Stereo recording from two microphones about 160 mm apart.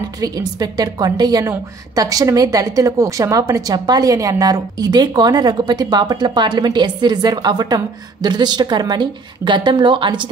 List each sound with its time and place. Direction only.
0.2 s a woman's voice: 25° right (ahead or behind)